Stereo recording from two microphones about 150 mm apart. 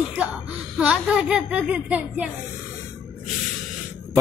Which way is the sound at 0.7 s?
5° right (ahead or behind).